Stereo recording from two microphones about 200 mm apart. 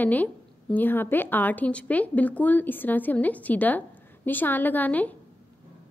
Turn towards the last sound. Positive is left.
turn(degrees=10)  # may be behind; listen again after turning